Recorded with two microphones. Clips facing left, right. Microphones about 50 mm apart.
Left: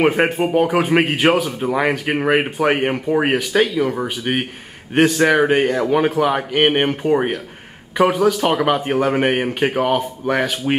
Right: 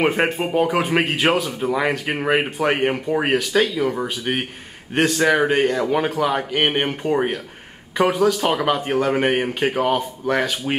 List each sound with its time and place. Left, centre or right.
0.0 s speech: centre
1.6 s speech: centre
1.9 s speech: centre